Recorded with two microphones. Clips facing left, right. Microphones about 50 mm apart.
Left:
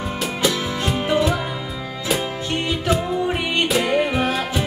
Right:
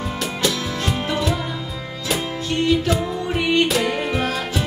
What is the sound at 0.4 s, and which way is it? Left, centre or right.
Music, centre.